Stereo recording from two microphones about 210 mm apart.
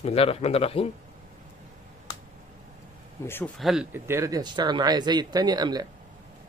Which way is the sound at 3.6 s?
5° right (ahead or behind).